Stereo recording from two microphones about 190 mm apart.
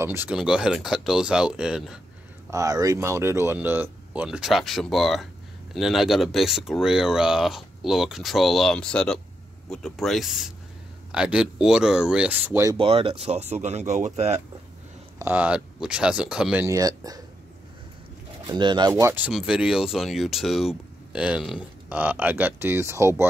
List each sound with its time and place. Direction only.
0.0 s speech: 10° right (ahead or behind)
2.5 s speech: 20° right (ahead or behind)
12.7 s speech: 30° right (ahead or behind)
15.1 s speech: 10° right (ahead or behind)
16.6 s speech: 20° right (ahead or behind)
18.5 s speech: 25° right (ahead or behind)